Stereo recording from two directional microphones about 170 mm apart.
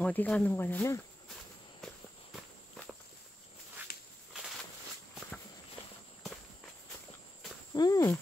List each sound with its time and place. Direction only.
0.0 s speech: 10° left (ahead or behind)
3.8 s walk: 10° right (ahead or behind)
7.7 s speech: 20° left (ahead or behind)